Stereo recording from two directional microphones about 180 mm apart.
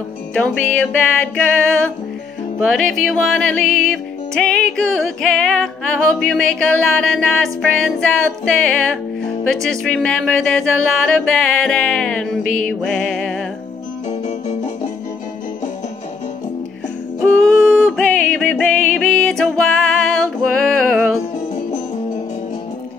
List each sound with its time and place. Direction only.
0.3 s music: 10° left (ahead or behind)
2.6 s music: centre (ahead or behind)
9.2 s music: 5° left (ahead or behind)
14.2 s music: 40° left (ahead or behind)
17.2 s music: 5° left (ahead or behind)